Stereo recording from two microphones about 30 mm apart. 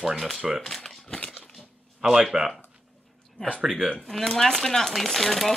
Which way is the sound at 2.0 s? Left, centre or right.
Right.